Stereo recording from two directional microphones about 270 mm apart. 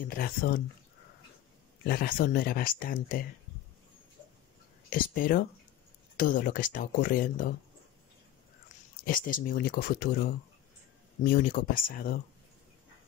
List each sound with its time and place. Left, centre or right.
0.0 s speech: left
1.9 s speech: left
4.8 s speech: left
9.0 s speech: left
11.2 s speech: left